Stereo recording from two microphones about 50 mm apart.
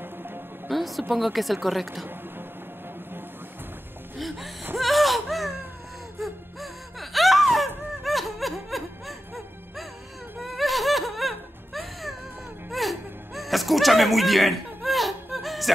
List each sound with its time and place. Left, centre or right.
0.0 s music: right
0.7 s music: centre
1.1 s speech: centre
4.7 s baby cry: centre
6.1 s a sound: centre
10.4 s music: centre
12.7 s whimper: centre